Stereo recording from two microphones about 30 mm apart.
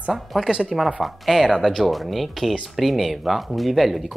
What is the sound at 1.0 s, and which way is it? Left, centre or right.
Speech, centre.